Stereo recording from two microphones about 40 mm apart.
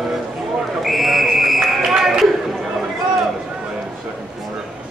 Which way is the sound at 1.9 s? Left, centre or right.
Centre.